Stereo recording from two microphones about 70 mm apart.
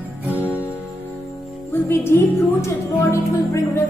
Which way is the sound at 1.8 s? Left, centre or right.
Left.